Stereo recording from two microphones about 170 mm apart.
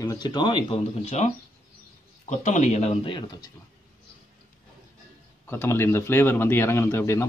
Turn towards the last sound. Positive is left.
turn(degrees=15)  # may be behind; listen again after turning